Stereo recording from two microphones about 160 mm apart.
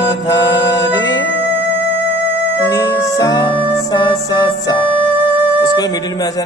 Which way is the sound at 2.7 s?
20° left (ahead or behind).